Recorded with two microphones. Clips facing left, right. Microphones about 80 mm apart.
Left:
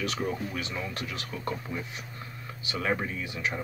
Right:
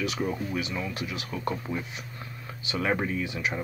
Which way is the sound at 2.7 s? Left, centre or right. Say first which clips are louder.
Right 3 dB; right.